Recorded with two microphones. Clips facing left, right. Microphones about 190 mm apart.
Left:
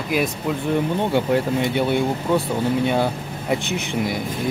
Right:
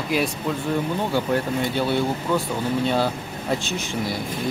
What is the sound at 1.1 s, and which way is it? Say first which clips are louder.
Speech: left 3 dB; 25° left (ahead or behind).